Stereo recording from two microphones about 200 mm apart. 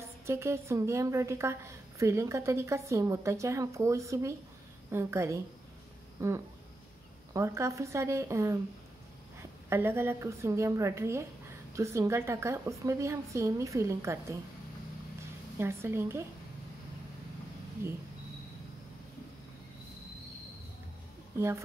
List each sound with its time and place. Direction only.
0.3 s a woman's voice: 15° right (ahead or behind)
9.7 s a woman's voice: 10° right (ahead or behind)
15.6 s a woman's voice: 10° right (ahead or behind)